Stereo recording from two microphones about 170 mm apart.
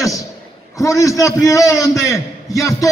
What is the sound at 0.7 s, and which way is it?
A man's voice, 20° left (ahead or behind).